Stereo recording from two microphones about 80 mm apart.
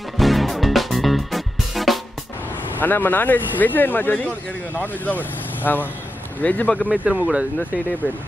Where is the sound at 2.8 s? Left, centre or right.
Left.